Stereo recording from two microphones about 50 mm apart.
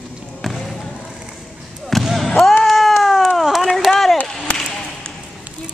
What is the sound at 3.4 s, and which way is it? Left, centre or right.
Run, centre.